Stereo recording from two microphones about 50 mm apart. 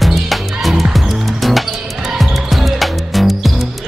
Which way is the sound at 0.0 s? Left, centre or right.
Centre.